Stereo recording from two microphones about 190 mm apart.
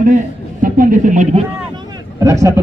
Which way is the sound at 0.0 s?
45° right (ahead or behind).